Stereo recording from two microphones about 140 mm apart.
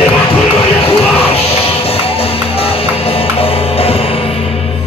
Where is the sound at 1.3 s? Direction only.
45° left (ahead or behind).